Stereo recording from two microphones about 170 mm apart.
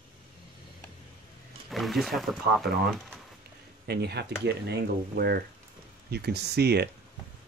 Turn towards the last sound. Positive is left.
turn(degrees=-75)  # may be behind; listen again after turning